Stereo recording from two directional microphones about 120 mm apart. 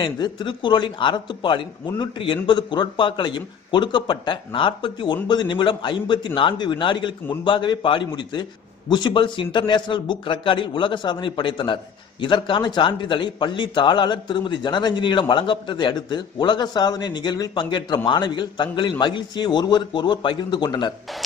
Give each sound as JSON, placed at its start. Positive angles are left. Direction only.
{"t": 0.0, "sound": "a man's voice", "side_deg": 40}